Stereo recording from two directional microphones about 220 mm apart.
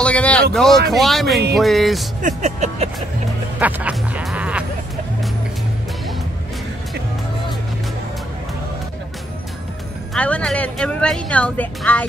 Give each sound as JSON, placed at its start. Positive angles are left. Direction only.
{"t": 0.0, "sound": "speech", "side_deg": 5}
{"t": 2.2, "sound": "music", "side_deg": -30}
{"t": 3.5, "sound": "music", "side_deg": -5}
{"t": 10.1, "sound": "speech", "side_deg": 5}